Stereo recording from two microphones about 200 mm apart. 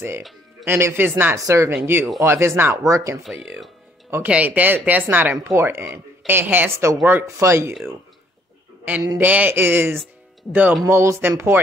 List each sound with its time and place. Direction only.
0.7 s speech: 10° right (ahead or behind)
8.8 s speech: 10° right (ahead or behind)